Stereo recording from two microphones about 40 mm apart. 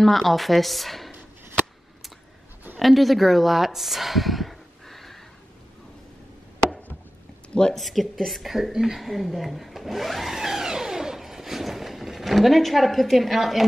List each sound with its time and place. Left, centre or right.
0.0 s a woman's voice: centre
2.8 s speech: centre
7.7 s a woman's voice: centre
8.7 s speech: centre
9.0 s speech: centre